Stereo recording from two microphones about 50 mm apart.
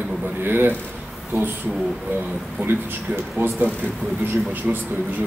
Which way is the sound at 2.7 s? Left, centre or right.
Right.